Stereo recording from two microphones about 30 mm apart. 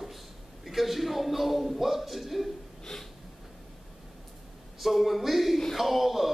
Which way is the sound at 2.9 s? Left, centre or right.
Centre.